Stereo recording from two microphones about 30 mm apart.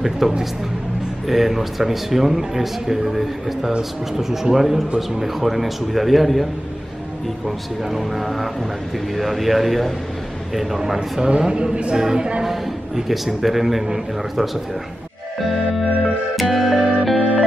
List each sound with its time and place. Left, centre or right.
0.2 s speech: centre
7.4 s a man's voice: centre
11.0 s speech: right
11.9 s speech: right
12.4 s speech: centre
16.3 s music: centre